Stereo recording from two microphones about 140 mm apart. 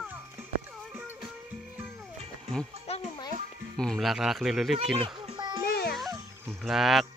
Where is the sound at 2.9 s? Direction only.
50° left (ahead or behind).